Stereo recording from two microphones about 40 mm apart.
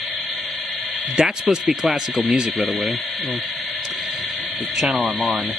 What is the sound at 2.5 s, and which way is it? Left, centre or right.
Speech, centre.